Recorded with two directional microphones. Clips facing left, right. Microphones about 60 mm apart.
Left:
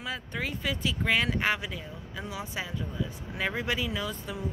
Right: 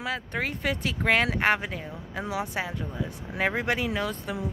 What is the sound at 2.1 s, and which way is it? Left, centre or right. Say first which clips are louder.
Speech: right 6 dB; right.